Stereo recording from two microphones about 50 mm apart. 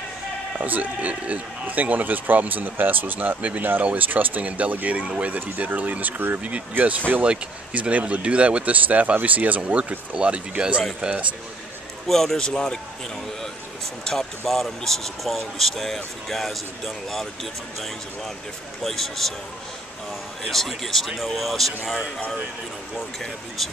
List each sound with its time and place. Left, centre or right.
0.6 s speech: right
7.2 s speech: right
12.1 s speech: centre
14.0 s speech: centre
18.8 s speech: centre
20.4 s speech: centre